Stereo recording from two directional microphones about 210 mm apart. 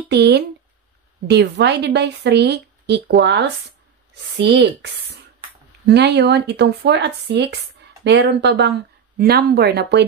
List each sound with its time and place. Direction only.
0.1 s speech: 55° right (ahead or behind)